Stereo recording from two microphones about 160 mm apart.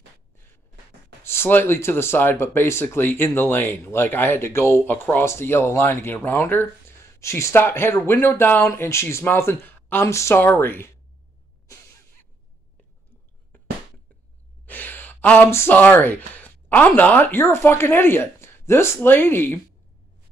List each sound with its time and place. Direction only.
1.2 s speech: 15° left (ahead or behind)
11.6 s music: 20° left (ahead or behind)
14.7 s speech: 10° left (ahead or behind)